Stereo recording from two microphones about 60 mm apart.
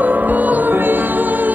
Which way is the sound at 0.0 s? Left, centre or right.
Right.